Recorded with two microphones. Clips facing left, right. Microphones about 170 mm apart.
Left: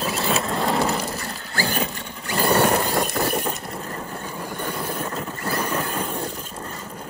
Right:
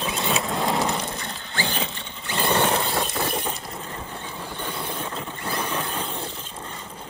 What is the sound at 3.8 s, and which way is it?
Train, 40° left (ahead or behind).